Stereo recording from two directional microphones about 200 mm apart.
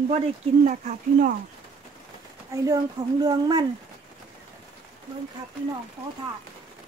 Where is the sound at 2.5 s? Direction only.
15° right (ahead or behind).